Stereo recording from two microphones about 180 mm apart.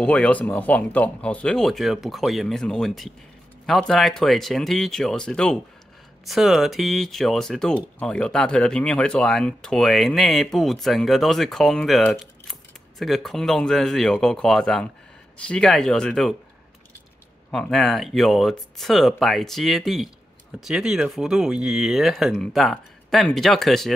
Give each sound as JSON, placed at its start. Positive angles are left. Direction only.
{"t": 0.0, "sound": "speech", "side_deg": 5}
{"t": 17.5, "sound": "speech", "side_deg": 5}